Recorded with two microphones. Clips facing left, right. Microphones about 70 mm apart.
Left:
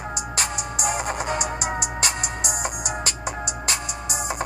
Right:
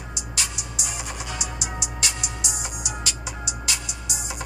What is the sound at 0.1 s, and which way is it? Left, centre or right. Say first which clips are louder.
Music: left 4 dB; left.